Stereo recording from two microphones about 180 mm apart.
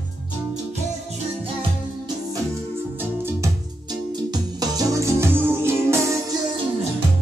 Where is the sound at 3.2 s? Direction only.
20° right (ahead or behind).